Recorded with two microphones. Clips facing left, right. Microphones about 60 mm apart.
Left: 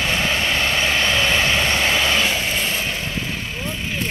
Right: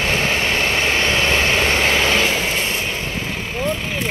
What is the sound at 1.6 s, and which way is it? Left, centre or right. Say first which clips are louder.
Vehicle: right 2 dB; right.